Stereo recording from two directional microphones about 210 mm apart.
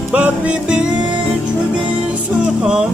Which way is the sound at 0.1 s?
5° right (ahead or behind).